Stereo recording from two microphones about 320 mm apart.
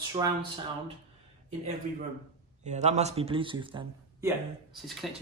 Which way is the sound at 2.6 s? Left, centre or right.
Right.